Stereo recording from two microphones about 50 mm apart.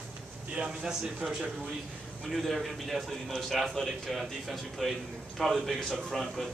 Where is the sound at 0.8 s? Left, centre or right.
Centre.